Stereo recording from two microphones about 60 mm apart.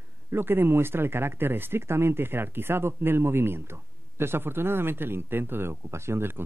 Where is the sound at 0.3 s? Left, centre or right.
Right.